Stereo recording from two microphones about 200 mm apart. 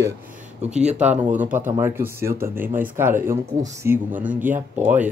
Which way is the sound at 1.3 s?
10° right (ahead or behind).